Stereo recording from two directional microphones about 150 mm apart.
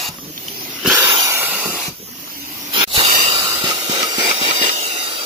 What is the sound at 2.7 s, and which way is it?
Hiss, 35° right (ahead or behind).